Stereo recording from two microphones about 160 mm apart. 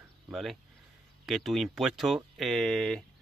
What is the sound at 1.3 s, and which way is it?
Speech, centre (ahead or behind).